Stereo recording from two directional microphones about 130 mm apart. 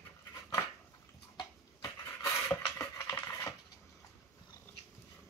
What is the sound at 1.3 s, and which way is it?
Dishes, 30° left (ahead or behind).